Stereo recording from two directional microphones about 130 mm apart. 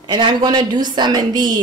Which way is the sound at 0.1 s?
35° right (ahead or behind).